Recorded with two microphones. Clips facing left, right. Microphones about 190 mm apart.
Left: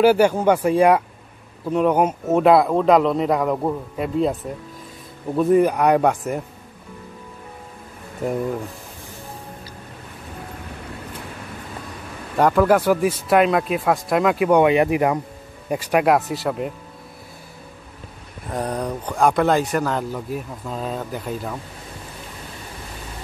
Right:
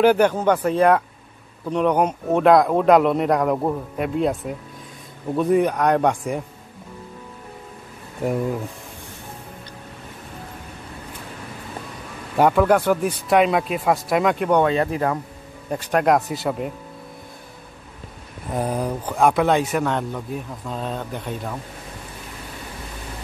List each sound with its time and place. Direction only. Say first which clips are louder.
0.0 s speech: left 1 dB; 5° left (ahead or behind)
8.2 s speech: even; centre (ahead or behind)
12.4 s speech: even; centre (ahead or behind)
18.5 s speech: right 1 dB; 5° right (ahead or behind)